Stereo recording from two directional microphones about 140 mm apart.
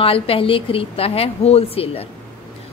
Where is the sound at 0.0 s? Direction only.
40° left (ahead or behind).